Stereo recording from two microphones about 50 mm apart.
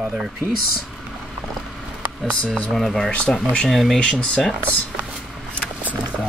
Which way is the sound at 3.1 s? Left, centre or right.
Left.